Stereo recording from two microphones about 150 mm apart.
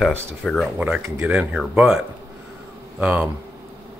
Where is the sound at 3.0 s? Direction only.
10° right (ahead or behind).